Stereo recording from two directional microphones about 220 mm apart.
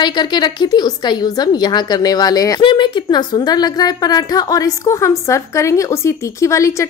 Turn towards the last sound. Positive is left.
turn(degrees=15)  # may be behind; listen again after turning